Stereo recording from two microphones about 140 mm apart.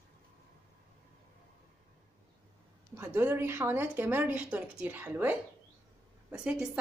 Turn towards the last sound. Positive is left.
turn(degrees=-5)  # may be behind; listen again after turning